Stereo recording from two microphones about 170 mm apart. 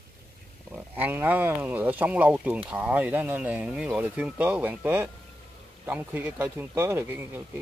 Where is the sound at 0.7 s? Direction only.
10° right (ahead or behind).